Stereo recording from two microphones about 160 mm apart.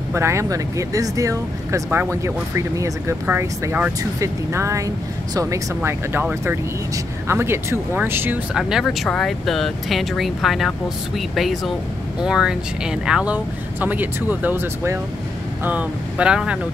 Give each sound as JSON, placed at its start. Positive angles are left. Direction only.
{"t": 0.1, "sound": "speech", "side_deg": -15}